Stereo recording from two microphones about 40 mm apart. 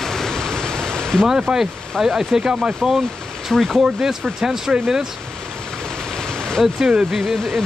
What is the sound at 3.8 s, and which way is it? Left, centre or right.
Speech, centre.